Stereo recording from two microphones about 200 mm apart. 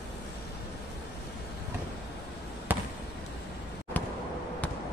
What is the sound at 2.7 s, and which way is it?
Basketball bounce, 10° right (ahead or behind).